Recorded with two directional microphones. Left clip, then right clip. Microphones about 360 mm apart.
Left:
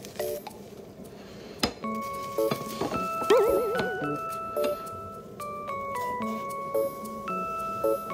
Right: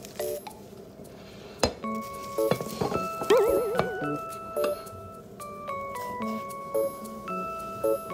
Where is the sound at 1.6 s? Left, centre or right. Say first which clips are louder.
Right 2 dB; centre.